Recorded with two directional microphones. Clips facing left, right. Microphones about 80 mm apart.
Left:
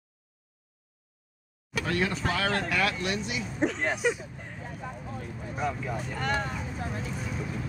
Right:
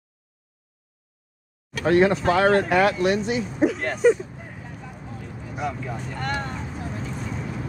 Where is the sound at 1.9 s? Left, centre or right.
Right.